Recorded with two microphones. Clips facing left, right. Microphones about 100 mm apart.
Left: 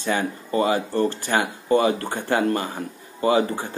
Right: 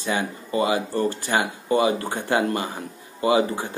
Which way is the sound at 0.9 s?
15° right (ahead or behind).